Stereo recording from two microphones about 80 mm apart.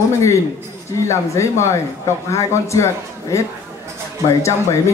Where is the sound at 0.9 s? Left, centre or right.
Left.